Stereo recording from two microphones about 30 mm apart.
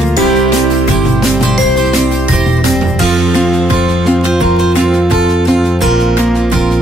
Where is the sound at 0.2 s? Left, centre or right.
Centre.